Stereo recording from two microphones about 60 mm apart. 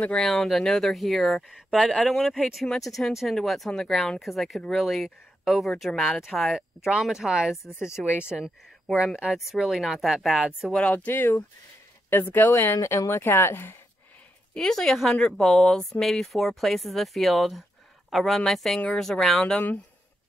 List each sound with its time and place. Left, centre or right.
0.2 s speech: centre
6.8 s speech: centre
8.1 s speech: left
8.9 s speech: centre
10.8 s speech: centre
11.1 s speech: left
14.5 s speech: centre